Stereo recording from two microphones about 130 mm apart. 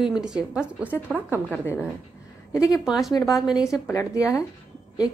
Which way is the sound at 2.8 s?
Centre (ahead or behind).